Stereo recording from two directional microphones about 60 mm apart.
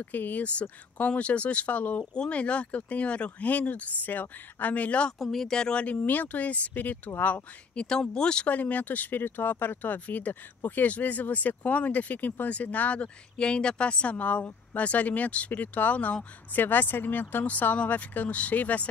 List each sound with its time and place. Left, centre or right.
0.0 s speech: left
5.2 s speech: centre; by 7.8 s left
7.8 s speech: centre
8.5 s speech: left
16.6 s speech: left